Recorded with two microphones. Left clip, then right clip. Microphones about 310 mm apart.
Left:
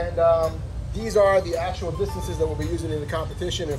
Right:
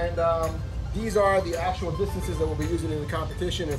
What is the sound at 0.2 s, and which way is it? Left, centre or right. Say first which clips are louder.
A man's voice: left 7 dB; centre.